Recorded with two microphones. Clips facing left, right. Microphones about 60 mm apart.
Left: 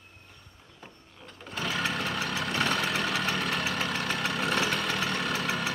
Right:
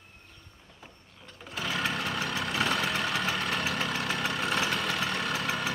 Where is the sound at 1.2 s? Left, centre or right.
Centre.